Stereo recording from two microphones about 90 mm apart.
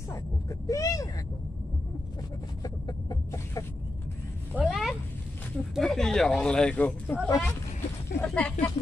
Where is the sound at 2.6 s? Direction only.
45° left (ahead or behind).